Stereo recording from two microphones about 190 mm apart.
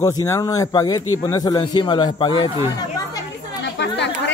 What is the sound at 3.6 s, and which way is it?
Chatter, 65° left (ahead or behind).